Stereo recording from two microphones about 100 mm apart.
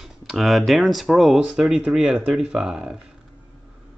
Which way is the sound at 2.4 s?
5° right (ahead or behind).